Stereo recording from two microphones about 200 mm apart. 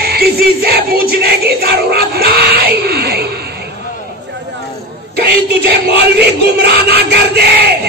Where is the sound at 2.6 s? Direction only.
50° right (ahead or behind).